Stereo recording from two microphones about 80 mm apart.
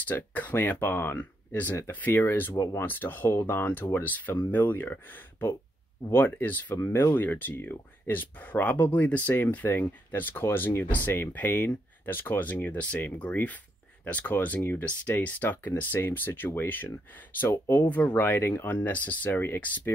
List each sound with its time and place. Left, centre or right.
0.1 s speech: left
2.5 s speech: left
2.8 s speech: left
6.0 s speech: left